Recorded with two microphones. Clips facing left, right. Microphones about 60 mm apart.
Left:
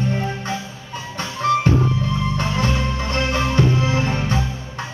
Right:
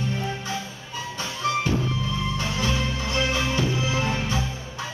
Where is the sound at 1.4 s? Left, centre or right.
Left.